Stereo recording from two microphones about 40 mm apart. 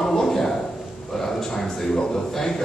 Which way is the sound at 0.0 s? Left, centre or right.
Centre.